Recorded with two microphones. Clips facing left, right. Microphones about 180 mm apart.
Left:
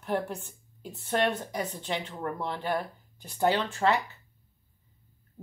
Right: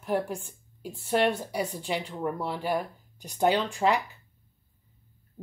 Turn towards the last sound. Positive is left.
turn(degrees=-15)  # may be behind; listen again after turning